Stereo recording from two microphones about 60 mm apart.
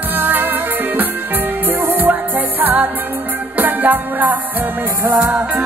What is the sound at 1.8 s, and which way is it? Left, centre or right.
Music, right.